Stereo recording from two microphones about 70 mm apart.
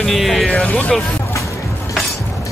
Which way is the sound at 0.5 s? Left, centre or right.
Centre.